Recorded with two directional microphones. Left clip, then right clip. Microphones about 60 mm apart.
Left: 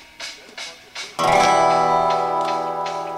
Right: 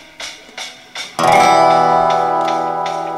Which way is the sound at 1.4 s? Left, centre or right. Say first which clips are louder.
Right 5 dB; right.